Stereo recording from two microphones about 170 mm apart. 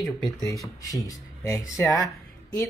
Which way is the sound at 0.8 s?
20° left (ahead or behind).